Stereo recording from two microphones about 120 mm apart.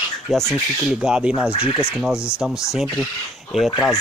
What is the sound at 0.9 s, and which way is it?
Speech, 5° right (ahead or behind).